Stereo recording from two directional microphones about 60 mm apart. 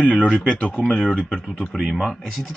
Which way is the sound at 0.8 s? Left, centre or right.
Centre.